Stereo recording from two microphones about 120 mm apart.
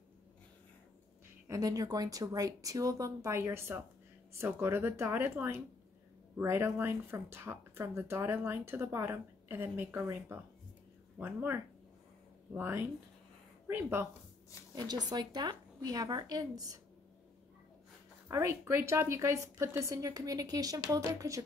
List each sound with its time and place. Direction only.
1.5 s speech: 30° right (ahead or behind)
14.8 s a woman's voice: 30° right (ahead or behind)
18.3 s speech: 20° right (ahead or behind)